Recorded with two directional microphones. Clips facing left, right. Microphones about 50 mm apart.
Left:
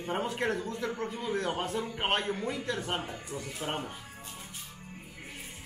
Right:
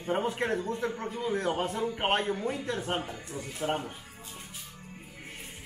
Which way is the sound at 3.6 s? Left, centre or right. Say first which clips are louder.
Right 5 dB; centre.